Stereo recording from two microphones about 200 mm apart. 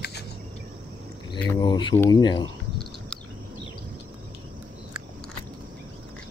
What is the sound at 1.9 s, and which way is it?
Speech, 10° left (ahead or behind).